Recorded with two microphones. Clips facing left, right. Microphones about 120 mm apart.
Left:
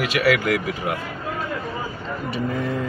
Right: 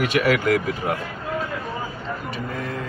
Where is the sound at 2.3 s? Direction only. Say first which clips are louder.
Left 8 dB; 5° left (ahead or behind).